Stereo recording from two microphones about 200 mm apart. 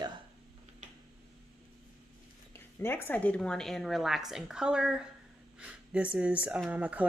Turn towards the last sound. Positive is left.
turn(degrees=-5)  # may be behind; listen again after turning